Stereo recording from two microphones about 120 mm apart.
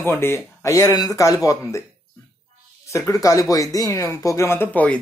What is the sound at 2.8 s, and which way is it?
A man's voice, 25° left (ahead or behind).